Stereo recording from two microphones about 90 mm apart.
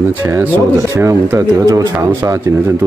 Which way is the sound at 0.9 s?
35° right (ahead or behind).